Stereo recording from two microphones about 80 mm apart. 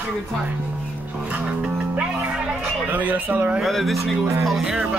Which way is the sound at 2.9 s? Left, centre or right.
Right.